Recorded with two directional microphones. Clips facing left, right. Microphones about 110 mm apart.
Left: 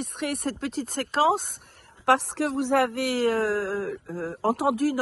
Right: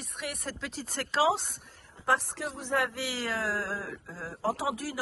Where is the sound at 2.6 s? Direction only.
70° left (ahead or behind).